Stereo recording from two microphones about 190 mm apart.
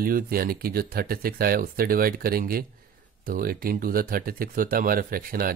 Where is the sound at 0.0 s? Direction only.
50° right (ahead or behind).